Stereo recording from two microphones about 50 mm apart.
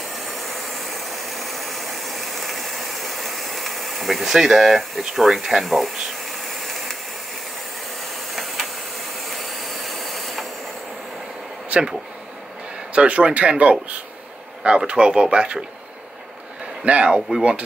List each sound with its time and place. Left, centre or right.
0.2 s engine: centre
1.2 s ratchet: centre
6.6 s a sound: centre
9.3 s a sound: centre
11.7 s speech: right
12.9 s speech: right
16.8 s speech: right